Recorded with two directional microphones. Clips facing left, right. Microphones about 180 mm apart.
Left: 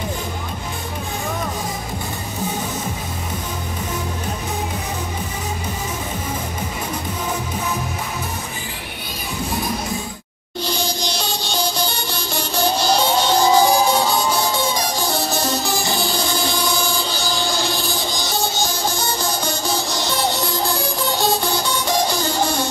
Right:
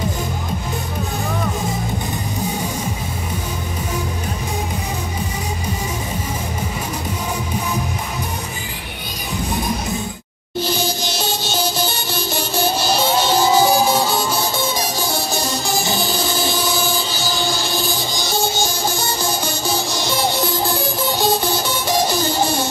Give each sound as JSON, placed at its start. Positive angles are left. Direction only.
{"t": 10.6, "sound": "music", "side_deg": -5}